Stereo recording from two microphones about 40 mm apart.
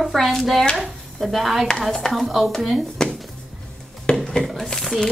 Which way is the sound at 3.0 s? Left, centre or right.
Centre.